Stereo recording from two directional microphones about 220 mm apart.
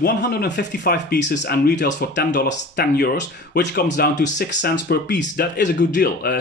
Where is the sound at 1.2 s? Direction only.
35° left (ahead or behind).